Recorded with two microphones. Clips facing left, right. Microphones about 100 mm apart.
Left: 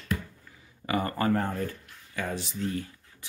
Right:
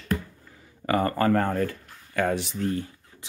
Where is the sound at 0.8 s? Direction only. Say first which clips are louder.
Right 4 dB; 45° right (ahead or behind).